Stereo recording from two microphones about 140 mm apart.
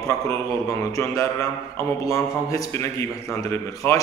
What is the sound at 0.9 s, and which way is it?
Speech, 20° left (ahead or behind).